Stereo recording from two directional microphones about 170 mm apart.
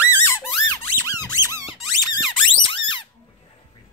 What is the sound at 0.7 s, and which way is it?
Squeak, 20° left (ahead or behind).